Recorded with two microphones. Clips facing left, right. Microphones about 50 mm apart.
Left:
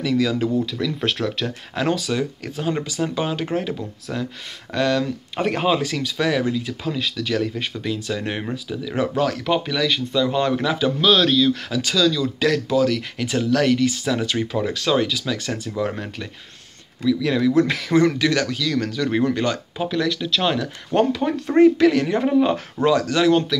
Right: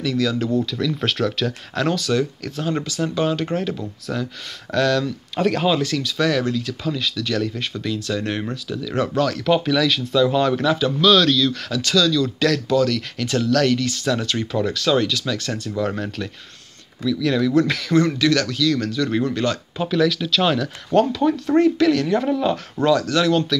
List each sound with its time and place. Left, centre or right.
0.0 s speech: left
1.0 s speech: centre
1.9 s a man's voice: centre
4.1 s speech: centre
4.7 s a man's voice: centre
15.8 s a man's voice: centre
17.0 s speech: left
17.3 s speech: centre
19.8 s speech: centre
21.0 s speech: left